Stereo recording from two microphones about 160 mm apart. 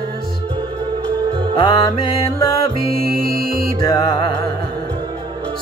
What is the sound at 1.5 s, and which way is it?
Music, 30° left (ahead or behind).